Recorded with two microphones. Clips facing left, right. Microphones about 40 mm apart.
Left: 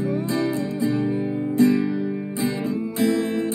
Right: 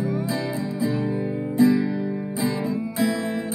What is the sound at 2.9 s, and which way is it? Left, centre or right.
Music, centre.